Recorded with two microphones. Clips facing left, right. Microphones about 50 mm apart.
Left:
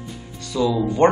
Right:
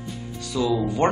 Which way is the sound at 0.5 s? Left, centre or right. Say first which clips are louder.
Left 3 dB; centre.